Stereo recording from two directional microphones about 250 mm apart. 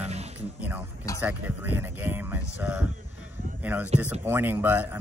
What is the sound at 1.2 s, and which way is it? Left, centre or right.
Speech, centre.